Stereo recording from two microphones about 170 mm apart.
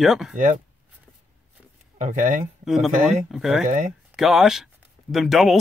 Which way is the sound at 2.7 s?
Centre (ahead or behind).